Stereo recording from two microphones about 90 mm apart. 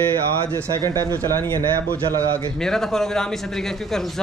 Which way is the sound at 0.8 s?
45° right (ahead or behind).